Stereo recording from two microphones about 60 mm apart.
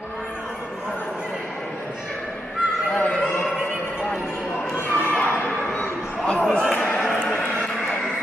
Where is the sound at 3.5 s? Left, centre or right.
Centre.